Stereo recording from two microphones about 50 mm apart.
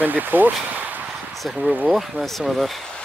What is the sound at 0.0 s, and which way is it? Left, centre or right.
Speech, right.